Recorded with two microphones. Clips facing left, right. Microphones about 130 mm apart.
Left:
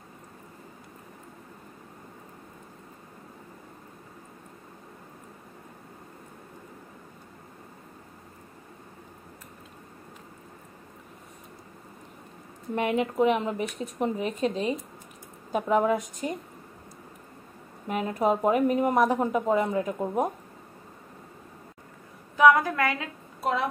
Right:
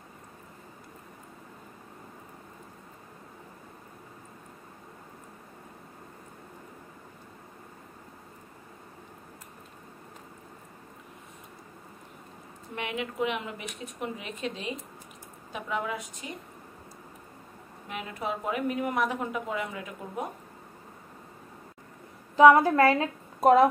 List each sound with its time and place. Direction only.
12.7 s a woman's voice: 40° left (ahead or behind)
17.8 s a woman's voice: 40° left (ahead or behind)
22.4 s a woman's voice: 30° right (ahead or behind); by 23.7 s 45° right (ahead or behind)